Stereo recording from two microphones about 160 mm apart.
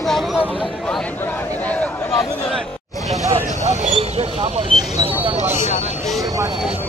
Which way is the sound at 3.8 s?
45° right (ahead or behind).